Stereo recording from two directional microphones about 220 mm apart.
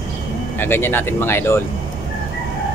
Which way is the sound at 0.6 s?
10° left (ahead or behind).